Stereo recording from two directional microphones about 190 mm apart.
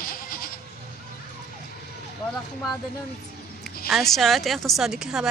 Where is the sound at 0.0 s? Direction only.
50° left (ahead or behind).